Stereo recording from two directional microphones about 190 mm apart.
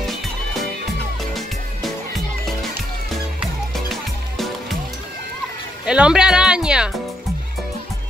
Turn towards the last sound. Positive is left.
turn(degrees=-5)  # may be behind; listen again after turning